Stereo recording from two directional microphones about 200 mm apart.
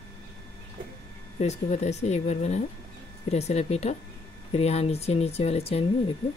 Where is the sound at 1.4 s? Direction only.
35° left (ahead or behind).